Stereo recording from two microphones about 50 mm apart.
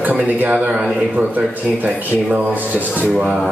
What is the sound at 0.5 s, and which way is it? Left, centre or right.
Speech, right.